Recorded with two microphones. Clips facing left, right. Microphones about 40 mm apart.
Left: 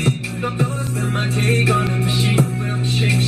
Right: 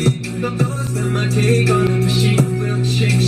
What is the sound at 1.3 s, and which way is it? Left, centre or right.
Music, left.